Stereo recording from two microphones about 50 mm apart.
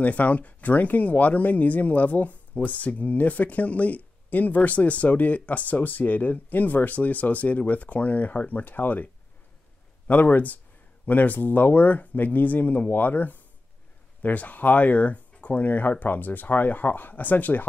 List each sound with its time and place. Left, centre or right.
0.0 s speech: left